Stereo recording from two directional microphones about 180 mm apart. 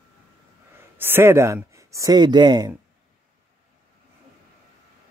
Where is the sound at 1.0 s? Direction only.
10° right (ahead or behind).